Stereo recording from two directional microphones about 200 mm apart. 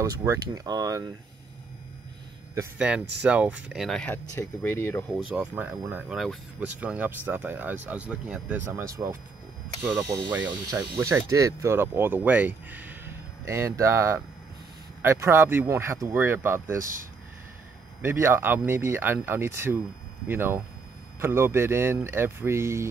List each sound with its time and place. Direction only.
0.0 s speech: 15° right (ahead or behind)
2.5 s speech: 10° right (ahead or behind); by 5.0 s 10° left (ahead or behind)
5.3 s speech: 5° right (ahead or behind)
18.0 s speech: 10° right (ahead or behind)